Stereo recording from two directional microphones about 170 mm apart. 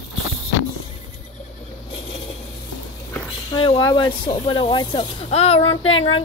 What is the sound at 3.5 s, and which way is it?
Speech, 30° left (ahead or behind).